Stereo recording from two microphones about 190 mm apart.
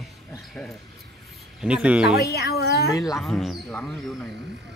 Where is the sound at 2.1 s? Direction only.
60° left (ahead or behind).